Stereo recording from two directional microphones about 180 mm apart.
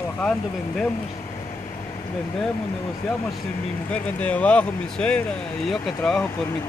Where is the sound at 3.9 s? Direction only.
5° left (ahead or behind).